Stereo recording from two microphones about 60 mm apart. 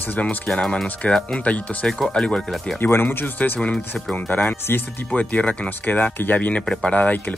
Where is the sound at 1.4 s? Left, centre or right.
Left.